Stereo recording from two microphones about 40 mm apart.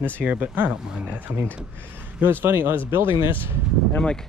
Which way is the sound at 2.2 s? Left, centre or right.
Right.